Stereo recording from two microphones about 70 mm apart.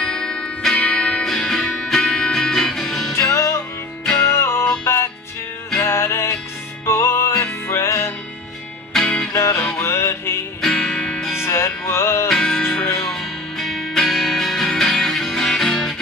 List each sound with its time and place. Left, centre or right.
0.0 s music: centre
3.1 s music: left
8.9 s music: centre
9.3 s music: left
9.8 s music: left
10.6 s music: centre
11.4 s music: left
12.3 s music: centre